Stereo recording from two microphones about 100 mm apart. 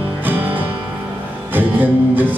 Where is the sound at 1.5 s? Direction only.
20° right (ahead or behind).